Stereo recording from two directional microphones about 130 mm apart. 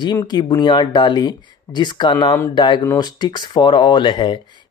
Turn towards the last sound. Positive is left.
turn(degrees=35)  # may be behind; listen again after turning